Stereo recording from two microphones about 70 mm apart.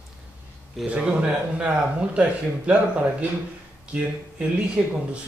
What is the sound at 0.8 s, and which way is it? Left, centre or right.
Speech, centre.